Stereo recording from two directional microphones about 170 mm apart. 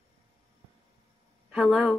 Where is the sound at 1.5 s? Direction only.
Centre (ahead or behind).